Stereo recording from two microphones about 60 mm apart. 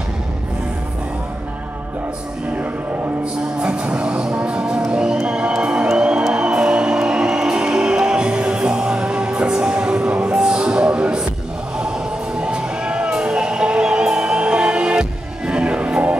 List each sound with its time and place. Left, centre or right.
3.6 s music: centre
12.4 s music: centre